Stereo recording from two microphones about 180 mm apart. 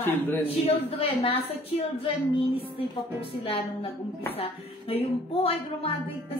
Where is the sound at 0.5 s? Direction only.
35° left (ahead or behind).